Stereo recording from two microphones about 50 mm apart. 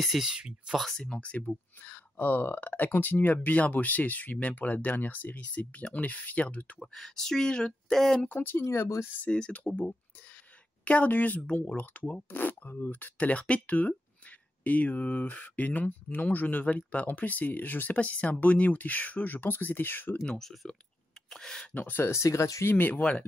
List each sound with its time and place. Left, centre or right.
0.0 s speech: centre
0.3 s speech: centre
0.9 s speech: centre
2.1 s speech: left
6.8 s speech: centre
8.3 s speech: left
8.6 s speech: left
9.3 s speech: left
20.2 s speech: centre
21.7 s speech: left
22.0 s speech: left
22.7 s speech: left